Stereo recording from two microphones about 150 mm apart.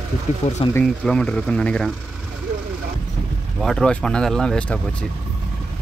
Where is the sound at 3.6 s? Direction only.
5° left (ahead or behind).